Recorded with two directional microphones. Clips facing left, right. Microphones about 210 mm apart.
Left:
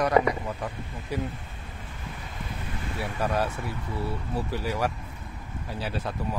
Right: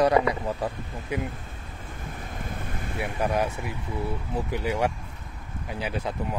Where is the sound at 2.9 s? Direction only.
15° right (ahead or behind).